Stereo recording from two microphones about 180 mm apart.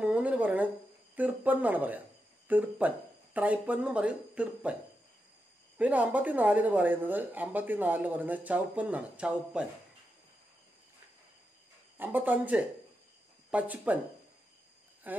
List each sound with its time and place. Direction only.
0.0 s speech: 10° right (ahead or behind)
5.8 s speech: 10° right (ahead or behind)
12.0 s speech: 10° right (ahead or behind)
15.0 s speech: 10° right (ahead or behind)